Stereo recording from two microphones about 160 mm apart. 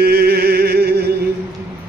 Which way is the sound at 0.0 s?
75° right (ahead or behind).